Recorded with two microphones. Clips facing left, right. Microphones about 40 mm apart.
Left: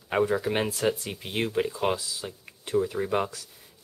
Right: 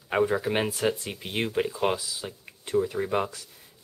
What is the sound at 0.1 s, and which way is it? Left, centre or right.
Speech, centre.